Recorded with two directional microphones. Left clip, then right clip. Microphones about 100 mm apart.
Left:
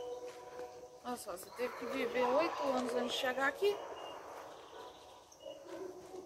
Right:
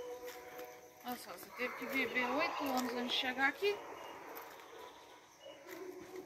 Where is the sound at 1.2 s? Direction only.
45° left (ahead or behind).